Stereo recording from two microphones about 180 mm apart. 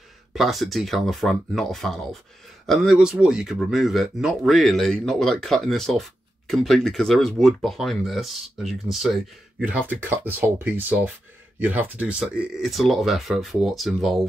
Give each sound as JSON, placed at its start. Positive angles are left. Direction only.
{"t": 0.3, "sound": "speech", "side_deg": 0}